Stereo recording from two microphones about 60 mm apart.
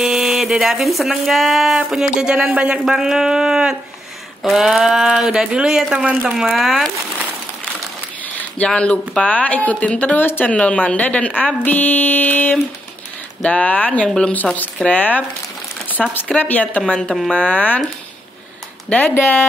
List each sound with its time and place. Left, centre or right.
0.0 s speech: centre
2.8 s speech: centre
8.6 s a woman's voice: centre
10.4 s a woman's voice: left
14.0 s a woman's voice: centre
14.3 s a woman's voice: left
16.3 s a woman's voice: left
16.8 s a woman's voice: centre
18.9 s a woman's voice: left